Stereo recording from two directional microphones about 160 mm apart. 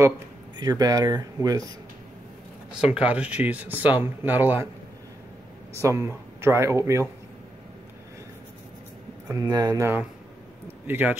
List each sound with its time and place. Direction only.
0.6 s speech: 25° right (ahead or behind)
2.7 s speech: 5° right (ahead or behind)
5.8 s speech: 15° right (ahead or behind)
9.3 s speech: 20° right (ahead or behind)